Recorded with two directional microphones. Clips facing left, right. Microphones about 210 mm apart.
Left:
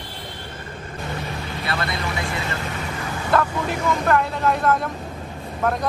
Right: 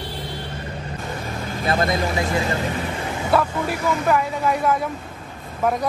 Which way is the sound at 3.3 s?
10° right (ahead or behind).